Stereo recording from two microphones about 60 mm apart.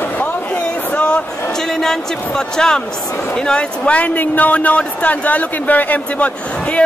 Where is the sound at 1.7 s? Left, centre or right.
Centre.